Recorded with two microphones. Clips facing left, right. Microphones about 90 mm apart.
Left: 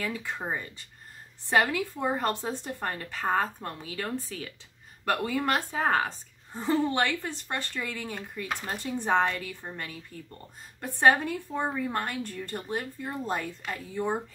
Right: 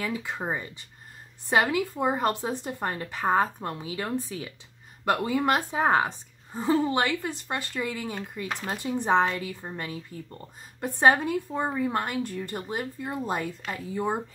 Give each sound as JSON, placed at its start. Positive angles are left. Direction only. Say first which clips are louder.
{"t": 0.0, "sound": "a woman's voice", "louder": "right 2 dB", "side_deg": -15}